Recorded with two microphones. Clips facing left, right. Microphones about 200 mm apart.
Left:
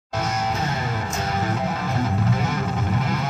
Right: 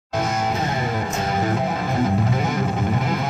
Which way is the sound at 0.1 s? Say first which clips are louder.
Right 3 dB; 15° right (ahead or behind).